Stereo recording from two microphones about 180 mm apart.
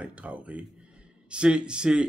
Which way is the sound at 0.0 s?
5° right (ahead or behind).